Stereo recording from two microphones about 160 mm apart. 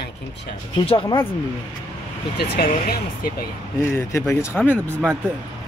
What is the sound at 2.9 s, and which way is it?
Speech, 65° left (ahead or behind).